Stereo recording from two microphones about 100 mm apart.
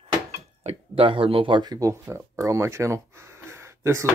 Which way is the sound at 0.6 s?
60° right (ahead or behind).